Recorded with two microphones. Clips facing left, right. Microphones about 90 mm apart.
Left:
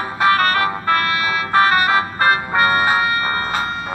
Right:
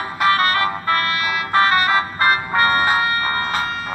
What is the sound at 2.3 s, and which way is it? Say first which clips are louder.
Music: left 1 dB; 25° left (ahead or behind).